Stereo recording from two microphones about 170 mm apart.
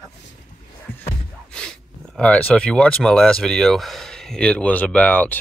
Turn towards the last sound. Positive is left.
turn(degrees=10)  # may be behind; listen again after turning